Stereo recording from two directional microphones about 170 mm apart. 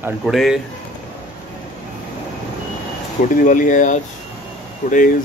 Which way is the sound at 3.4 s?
50° left (ahead or behind).